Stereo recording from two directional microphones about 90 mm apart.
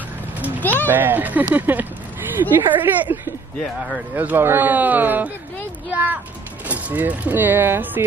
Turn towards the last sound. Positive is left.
turn(degrees=-25)  # may be behind; listen again after turning